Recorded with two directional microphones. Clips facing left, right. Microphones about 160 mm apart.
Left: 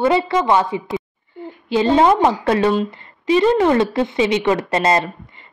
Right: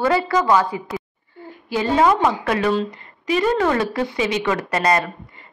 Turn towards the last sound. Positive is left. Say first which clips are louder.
# left 2 dB
turn(degrees=25)  # may be behind; listen again after turning